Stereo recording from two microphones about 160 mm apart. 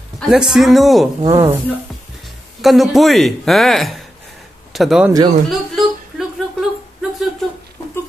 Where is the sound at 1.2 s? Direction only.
25° right (ahead or behind).